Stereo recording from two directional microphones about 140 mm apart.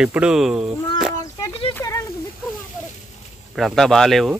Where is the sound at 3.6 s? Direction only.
Centre (ahead or behind).